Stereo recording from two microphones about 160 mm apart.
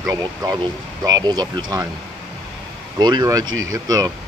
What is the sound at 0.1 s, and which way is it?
Speech, 20° right (ahead or behind).